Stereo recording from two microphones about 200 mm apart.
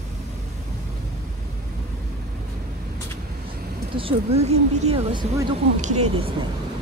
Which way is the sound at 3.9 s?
30° right (ahead or behind).